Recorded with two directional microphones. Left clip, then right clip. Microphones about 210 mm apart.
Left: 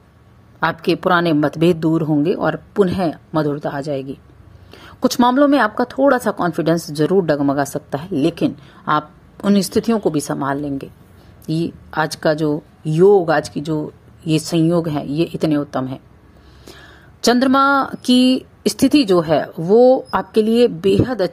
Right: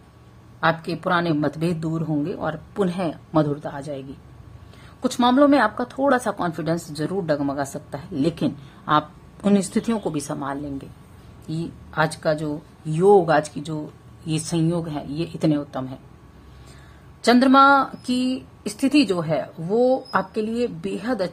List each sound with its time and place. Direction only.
0.7 s a woman's voice: 30° left (ahead or behind)
17.2 s a woman's voice: 30° left (ahead or behind)